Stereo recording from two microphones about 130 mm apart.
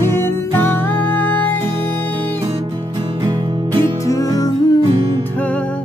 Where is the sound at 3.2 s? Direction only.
35° right (ahead or behind).